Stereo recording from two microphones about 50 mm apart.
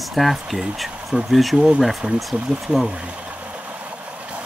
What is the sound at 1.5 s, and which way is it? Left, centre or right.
Speech, centre.